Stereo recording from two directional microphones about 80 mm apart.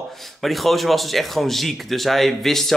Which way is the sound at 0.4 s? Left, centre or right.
Centre.